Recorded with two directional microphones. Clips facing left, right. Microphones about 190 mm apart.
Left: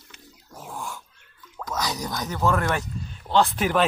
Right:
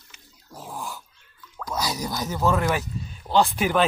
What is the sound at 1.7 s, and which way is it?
Speech, 5° right (ahead or behind).